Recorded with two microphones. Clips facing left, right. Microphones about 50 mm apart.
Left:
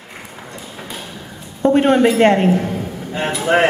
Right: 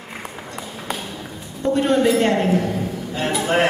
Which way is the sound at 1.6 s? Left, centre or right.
Left.